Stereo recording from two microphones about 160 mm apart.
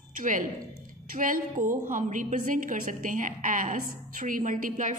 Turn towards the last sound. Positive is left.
turn(degrees=-55)  # may be behind; listen again after turning